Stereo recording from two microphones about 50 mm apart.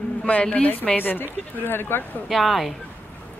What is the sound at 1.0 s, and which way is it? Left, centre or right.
Speech, left.